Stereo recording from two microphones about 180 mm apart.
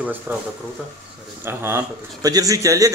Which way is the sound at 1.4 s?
15° right (ahead or behind).